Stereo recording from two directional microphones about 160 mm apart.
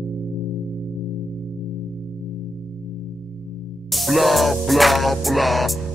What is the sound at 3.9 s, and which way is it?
Music, centre (ahead or behind).